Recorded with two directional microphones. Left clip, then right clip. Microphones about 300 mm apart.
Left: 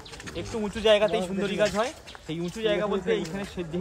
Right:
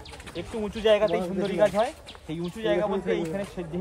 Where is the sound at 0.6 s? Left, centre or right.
Centre.